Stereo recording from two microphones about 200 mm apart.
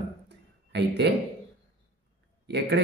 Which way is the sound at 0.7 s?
60° right (ahead or behind).